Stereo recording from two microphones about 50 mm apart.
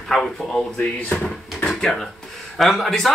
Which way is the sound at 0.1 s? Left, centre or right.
Centre.